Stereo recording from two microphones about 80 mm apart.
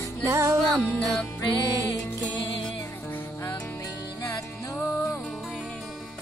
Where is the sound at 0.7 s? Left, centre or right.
Centre.